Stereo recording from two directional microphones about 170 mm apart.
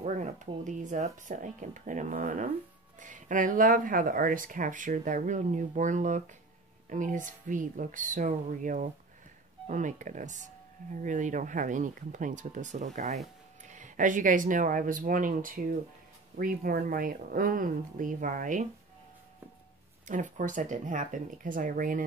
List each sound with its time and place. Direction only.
0.0 s speech: 45° right (ahead or behind)
20.1 s speech: 50° right (ahead or behind)